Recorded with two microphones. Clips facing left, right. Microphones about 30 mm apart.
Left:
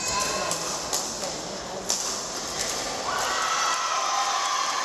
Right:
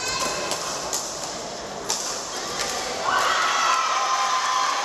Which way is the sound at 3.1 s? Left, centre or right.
Right.